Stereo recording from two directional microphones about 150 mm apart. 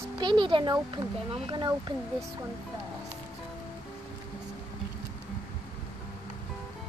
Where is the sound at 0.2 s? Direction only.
30° right (ahead or behind).